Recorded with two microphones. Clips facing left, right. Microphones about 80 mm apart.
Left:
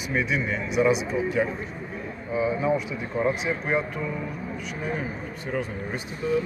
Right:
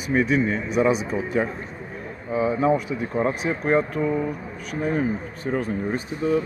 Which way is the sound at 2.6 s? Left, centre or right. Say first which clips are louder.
Right 4 dB; right.